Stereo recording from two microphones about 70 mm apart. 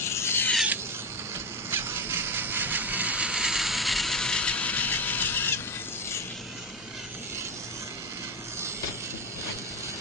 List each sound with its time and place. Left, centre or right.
0.1 s filing: left
1.7 s vehicle: right; by 5.6 s left